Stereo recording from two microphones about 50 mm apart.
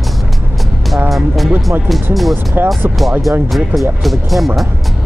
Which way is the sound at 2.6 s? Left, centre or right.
Right.